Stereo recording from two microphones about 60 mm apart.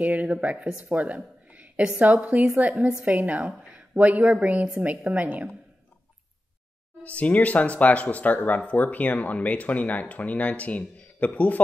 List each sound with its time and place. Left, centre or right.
0.0 s a woman's voice: right
2.7 s a woman's voice: centre
7.0 s speech: left